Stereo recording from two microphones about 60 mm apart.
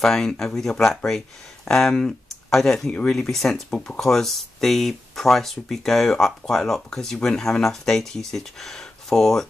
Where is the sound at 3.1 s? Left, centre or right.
Centre.